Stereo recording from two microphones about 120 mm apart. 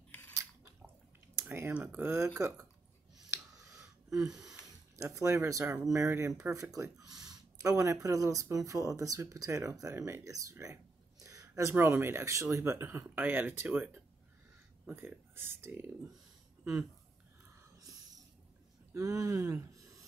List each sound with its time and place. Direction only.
0.1 s biting: 15° left (ahead or behind)
1.7 s speech: 10° right (ahead or behind)
3.3 s a sound: 25° right (ahead or behind)
4.9 s speech: 25° right (ahead or behind)
17.7 s snort: 30° right (ahead or behind)
18.9 s speech: 25° right (ahead or behind)